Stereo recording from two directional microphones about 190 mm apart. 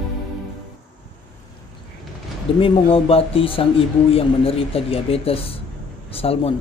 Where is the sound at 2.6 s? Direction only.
30° left (ahead or behind).